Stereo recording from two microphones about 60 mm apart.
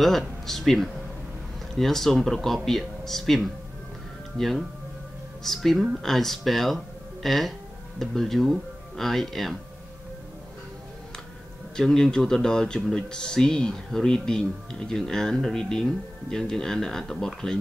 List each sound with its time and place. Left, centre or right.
0.0 s speech: centre
11.7 s speech: centre